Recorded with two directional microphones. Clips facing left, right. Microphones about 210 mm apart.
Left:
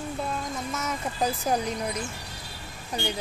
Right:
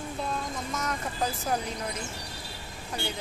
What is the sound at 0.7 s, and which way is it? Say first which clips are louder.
Speech: even; 5° left (ahead or behind).